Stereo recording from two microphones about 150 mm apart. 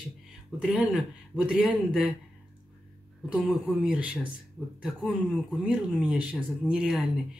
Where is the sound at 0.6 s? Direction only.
5° right (ahead or behind).